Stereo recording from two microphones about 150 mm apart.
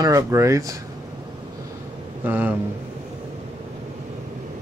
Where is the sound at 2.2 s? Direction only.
10° right (ahead or behind).